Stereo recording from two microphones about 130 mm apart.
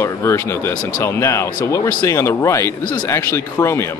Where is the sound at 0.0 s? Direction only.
20° left (ahead or behind).